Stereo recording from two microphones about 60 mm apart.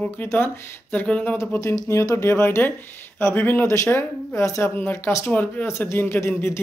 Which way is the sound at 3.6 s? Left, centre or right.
Left.